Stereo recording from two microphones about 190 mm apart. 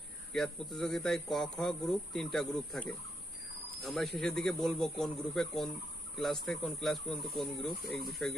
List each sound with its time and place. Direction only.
0.3 s speech: centre (ahead or behind)